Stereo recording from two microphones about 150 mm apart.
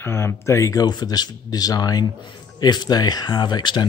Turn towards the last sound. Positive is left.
turn(degrees=30)  # may be behind; listen again after turning